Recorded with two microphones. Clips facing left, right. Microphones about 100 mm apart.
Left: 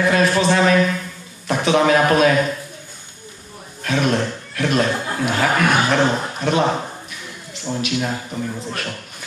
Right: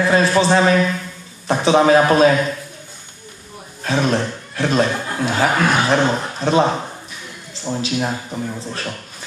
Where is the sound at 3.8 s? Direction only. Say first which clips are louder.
Right 1 dB; 30° right (ahead or behind).